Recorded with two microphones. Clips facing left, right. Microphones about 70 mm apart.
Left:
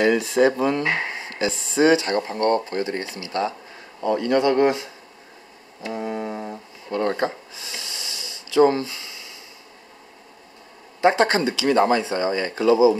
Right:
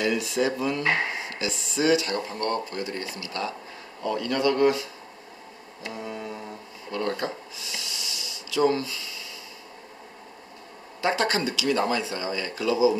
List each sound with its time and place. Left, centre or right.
0.0 s speech: left
5.8 s brass instrument: left
11.0 s speech: left